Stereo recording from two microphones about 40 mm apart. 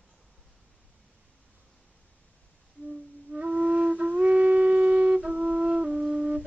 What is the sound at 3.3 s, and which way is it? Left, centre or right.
Flute, right.